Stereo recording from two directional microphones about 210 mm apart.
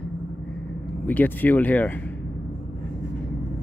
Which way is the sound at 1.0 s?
10° left (ahead or behind).